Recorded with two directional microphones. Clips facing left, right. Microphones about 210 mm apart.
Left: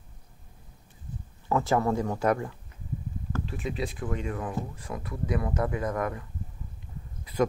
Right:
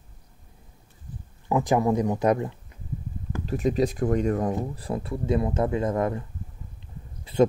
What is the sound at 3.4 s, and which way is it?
Speech, 40° right (ahead or behind).